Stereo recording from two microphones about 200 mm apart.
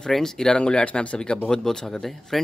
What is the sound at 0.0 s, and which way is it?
Speech, centre (ahead or behind).